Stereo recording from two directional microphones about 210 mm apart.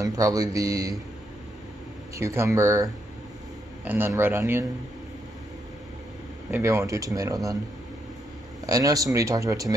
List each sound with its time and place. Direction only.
0.0 s speech: 15° right (ahead or behind)
2.1 s speech: 15° right (ahead or behind)
6.5 s speech: 10° right (ahead or behind)
8.6 s speech: 15° right (ahead or behind)